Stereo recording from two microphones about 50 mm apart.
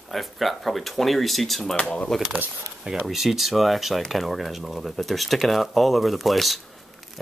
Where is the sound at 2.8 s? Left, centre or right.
Centre.